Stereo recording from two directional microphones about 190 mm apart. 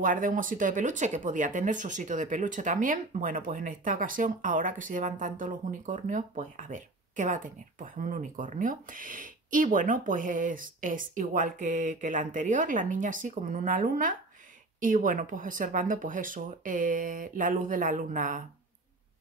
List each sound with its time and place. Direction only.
0.0 s speech: 45° right (ahead or behind)